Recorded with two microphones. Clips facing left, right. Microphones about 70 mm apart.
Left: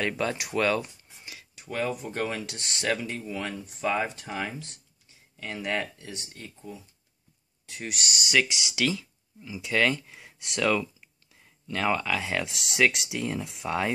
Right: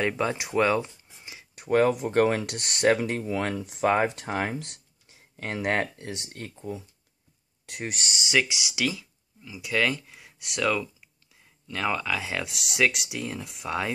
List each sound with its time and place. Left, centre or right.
0.0 s speech: centre
1.5 s a sound: right
2.0 s speech: right
3.8 s speech: right
4.1 s speech: right
5.4 s speech: right
6.1 s speech: right
6.4 s speech: right
7.8 s speech: right
8.3 s speech: centre
9.6 s speech: centre